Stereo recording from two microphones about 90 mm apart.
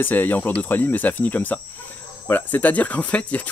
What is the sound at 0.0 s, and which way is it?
Speech, 20° left (ahead or behind).